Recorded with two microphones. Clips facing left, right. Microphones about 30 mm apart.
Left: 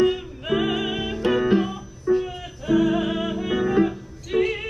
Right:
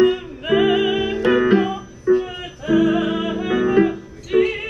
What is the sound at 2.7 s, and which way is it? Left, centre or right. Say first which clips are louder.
Music: right 3 dB; centre.